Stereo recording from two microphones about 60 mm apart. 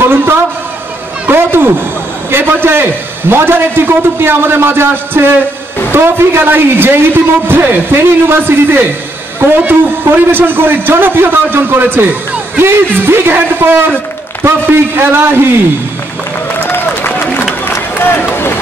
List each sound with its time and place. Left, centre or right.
0.0 s a man's voice: right
16.6 s applause: left
17.9 s run: left